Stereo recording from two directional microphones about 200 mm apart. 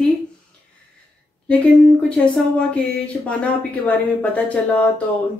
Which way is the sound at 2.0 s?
5° left (ahead or behind).